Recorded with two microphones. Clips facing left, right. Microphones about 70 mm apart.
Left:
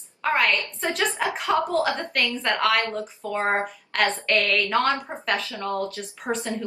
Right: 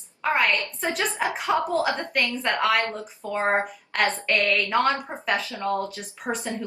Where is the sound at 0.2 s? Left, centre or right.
Centre.